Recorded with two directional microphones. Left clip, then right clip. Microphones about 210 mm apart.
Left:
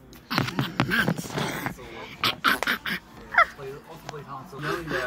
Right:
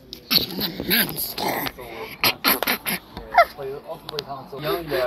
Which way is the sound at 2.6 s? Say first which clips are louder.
Right 2 dB; centre (ahead or behind).